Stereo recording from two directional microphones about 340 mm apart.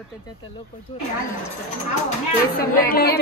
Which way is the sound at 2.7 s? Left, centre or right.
Left.